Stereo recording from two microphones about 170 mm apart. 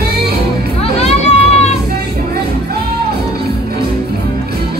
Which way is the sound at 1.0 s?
40° left (ahead or behind).